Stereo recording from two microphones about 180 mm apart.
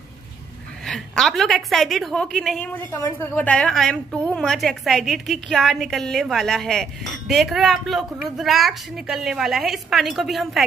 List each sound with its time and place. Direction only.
0.8 s a woman's voice: centre (ahead or behind)